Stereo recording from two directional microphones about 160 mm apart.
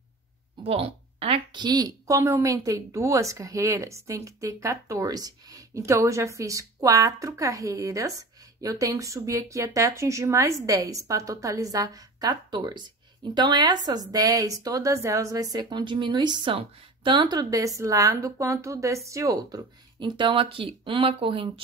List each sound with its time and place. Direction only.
0.7 s a woman's voice: 40° right (ahead or behind)